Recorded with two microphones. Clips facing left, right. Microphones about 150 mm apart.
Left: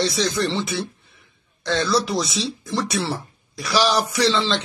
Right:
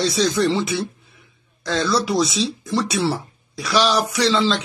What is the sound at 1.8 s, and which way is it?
Speech, centre (ahead or behind).